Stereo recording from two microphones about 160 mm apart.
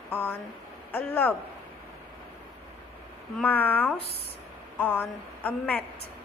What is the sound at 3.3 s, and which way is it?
A woman's voice, 10° left (ahead or behind).